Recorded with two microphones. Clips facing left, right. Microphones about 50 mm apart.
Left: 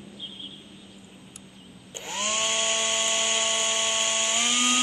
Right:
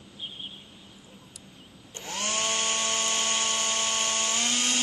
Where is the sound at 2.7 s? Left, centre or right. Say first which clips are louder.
Left 2 dB; centre.